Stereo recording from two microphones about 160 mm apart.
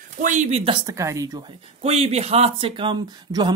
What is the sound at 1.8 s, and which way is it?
Speech, 40° right (ahead or behind).